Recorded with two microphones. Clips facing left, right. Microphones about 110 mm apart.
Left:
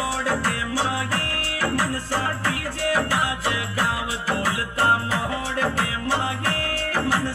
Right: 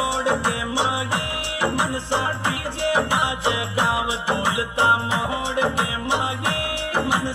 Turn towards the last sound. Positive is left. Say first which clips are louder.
# right 1 dB
turn(degrees=-20)  # may be behind; listen again after turning